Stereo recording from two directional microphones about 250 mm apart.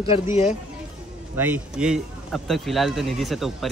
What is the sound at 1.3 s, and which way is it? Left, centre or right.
Speech, centre.